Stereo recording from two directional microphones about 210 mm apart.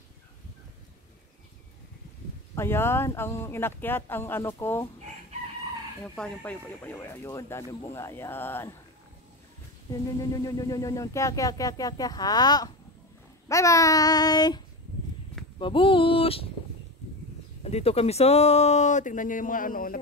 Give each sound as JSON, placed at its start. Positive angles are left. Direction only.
{"t": 2.5, "sound": "speech", "side_deg": 10}
{"t": 6.0, "sound": "speech", "side_deg": 5}
{"t": 10.1, "sound": "speech", "side_deg": 15}
{"t": 15.6, "sound": "speech", "side_deg": 25}
{"t": 17.6, "sound": "speech", "side_deg": 30}